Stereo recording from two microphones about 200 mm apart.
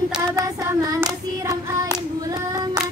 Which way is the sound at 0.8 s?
20° right (ahead or behind).